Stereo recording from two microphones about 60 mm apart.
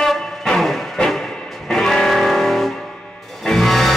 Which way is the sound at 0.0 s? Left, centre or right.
Centre.